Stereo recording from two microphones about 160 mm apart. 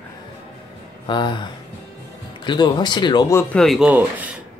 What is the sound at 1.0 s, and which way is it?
Speech, 30° left (ahead or behind).